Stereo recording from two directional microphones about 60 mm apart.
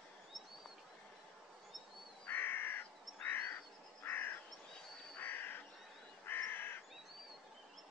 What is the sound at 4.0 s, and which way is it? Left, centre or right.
Bird, left.